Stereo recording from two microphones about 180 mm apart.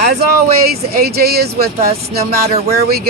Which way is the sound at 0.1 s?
60° right (ahead or behind).